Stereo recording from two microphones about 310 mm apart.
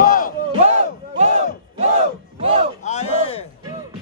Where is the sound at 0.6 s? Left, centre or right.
Right.